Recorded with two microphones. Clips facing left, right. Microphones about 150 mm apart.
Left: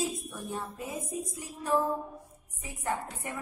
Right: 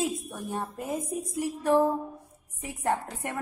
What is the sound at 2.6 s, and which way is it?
Speech, 75° right (ahead or behind).